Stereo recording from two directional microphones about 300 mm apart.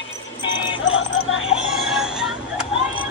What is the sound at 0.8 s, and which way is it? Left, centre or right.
Music, left.